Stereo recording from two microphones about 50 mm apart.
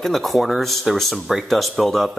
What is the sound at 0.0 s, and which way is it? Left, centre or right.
Speech, centre.